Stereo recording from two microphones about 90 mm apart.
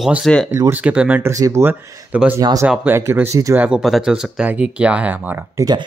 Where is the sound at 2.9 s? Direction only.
25° right (ahead or behind).